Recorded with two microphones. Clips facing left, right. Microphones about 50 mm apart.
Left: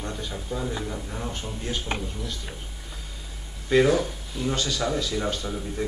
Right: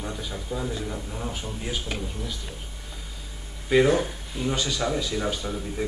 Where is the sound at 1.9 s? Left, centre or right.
Left.